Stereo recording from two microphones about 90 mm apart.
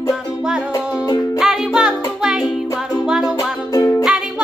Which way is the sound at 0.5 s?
10° right (ahead or behind).